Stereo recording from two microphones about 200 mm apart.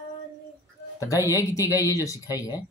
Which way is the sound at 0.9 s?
15° left (ahead or behind).